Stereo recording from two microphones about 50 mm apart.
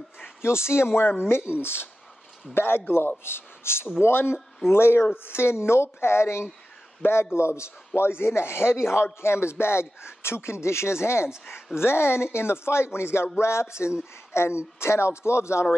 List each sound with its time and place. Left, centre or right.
0.4 s a man's voice: left
11.4 s a man's voice: left
13.4 s music: left
14.3 s a man's voice: left